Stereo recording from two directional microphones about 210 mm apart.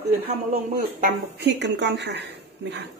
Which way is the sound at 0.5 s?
50° right (ahead or behind).